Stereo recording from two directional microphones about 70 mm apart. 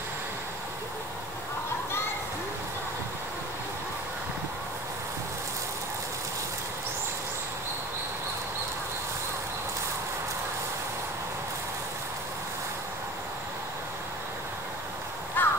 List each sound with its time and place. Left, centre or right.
15.4 s crow: left